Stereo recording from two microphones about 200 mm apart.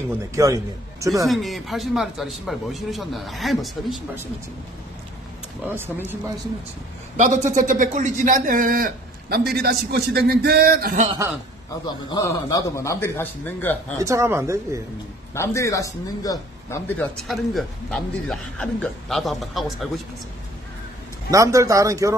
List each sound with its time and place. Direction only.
0.4 s speech: 15° right (ahead or behind)
1.2 s speech: centre (ahead or behind)
5.7 s speech: 10° right (ahead or behind)
7.5 s a man's voice: 40° right (ahead or behind)
11.8 s speech: 20° left (ahead or behind)
13.9 s speech: 15° right (ahead or behind)
15.3 s speech: 15° left (ahead or behind)
21.3 s speech: 15° right (ahead or behind)